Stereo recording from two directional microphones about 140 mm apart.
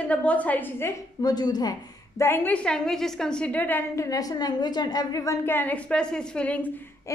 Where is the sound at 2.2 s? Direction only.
15° left (ahead or behind).